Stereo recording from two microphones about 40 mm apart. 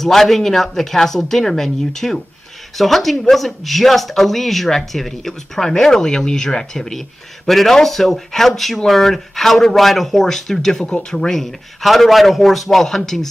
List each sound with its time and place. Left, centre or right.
0.0 s speech: centre
10.9 s speech: left
11.1 s speech: centre
11.8 s a man's voice: centre